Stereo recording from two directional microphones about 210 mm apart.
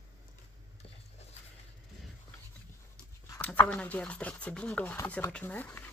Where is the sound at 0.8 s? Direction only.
25° left (ahead or behind).